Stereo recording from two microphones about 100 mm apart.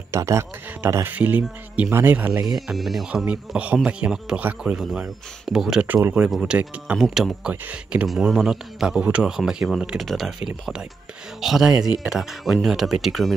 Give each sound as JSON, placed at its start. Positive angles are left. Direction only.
{"t": 0.1, "sound": "speech", "side_deg": -30}
{"t": 1.1, "sound": "a man's voice", "side_deg": -15}
{"t": 2.4, "sound": "speech", "side_deg": 0}
{"t": 3.3, "sound": "a man's voice", "side_deg": -10}
{"t": 7.4, "sound": "a man's voice", "side_deg": -10}
{"t": 8.1, "sound": "speech", "side_deg": 0}